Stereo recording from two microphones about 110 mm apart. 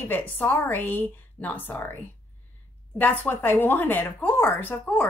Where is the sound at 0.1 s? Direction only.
20° left (ahead or behind).